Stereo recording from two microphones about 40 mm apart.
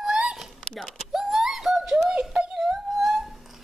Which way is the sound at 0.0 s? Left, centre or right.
Centre.